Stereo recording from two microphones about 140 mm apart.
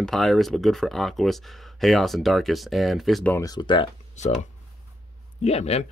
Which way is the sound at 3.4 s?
30° left (ahead or behind).